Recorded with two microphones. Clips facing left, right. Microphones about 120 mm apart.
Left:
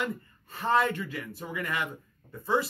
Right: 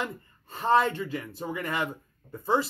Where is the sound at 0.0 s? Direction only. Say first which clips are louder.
Left 1 dB; 25° right (ahead or behind).